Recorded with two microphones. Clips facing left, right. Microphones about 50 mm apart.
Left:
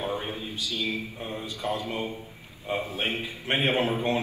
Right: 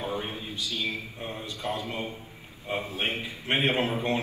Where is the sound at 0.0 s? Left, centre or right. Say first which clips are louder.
Left 1 dB; left.